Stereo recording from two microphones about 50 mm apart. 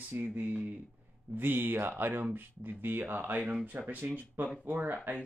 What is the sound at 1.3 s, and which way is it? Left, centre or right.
Speech, right.